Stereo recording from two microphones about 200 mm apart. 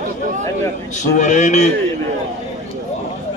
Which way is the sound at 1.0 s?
40° left (ahead or behind).